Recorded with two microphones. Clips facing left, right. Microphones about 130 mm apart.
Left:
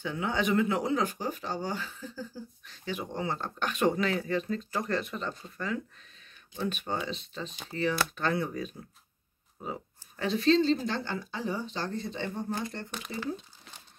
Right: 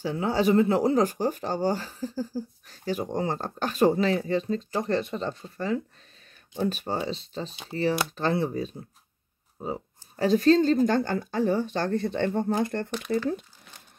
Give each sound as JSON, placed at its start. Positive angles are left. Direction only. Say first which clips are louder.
{"t": 0.0, "sound": "speech", "louder": "right 6 dB", "side_deg": -35}
{"t": 12.5, "sound": "speech", "louder": "right 9 dB", "side_deg": -50}